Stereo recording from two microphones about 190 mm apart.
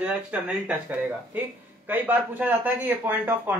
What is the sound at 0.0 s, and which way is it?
Speech, 5° right (ahead or behind).